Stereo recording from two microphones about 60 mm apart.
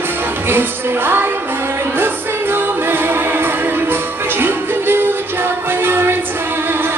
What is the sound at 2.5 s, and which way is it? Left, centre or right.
Music, right.